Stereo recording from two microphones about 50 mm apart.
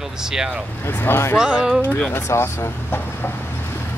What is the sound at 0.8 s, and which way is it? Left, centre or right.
Speech, left.